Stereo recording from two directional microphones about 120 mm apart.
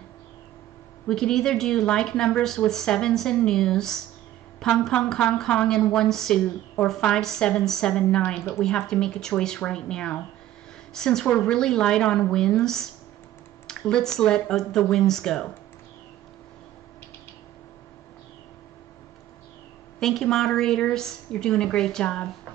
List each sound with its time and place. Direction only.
1.0 s a woman's voice: 5° left (ahead or behind)
8.4 s a woman's voice: 20° left (ahead or behind)
8.6 s a woman's voice: 5° left (ahead or behind)
20.0 s a woman's voice: 5° left (ahead or behind)